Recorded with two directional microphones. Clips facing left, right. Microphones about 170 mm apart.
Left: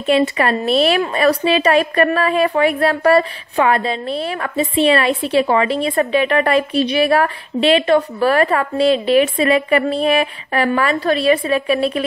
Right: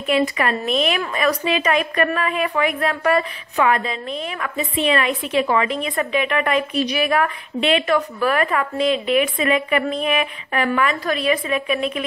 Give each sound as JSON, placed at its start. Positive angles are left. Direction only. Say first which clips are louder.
{"t": 0.0, "sound": "a woman's voice", "louder": "left 4 dB", "side_deg": 30}